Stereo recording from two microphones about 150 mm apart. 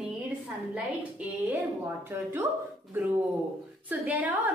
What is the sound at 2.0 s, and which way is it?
A woman's voice, 15° right (ahead or behind).